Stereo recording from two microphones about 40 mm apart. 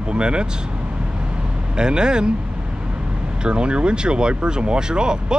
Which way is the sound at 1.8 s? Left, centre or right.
Right.